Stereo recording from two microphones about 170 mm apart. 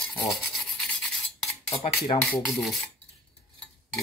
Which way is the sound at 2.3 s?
Centre (ahead or behind).